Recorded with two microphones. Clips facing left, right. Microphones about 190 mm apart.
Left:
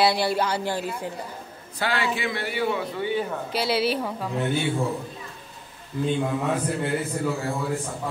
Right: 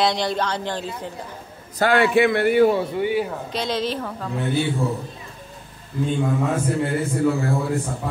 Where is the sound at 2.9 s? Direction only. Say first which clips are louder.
Right 4 dB; 10° right (ahead or behind).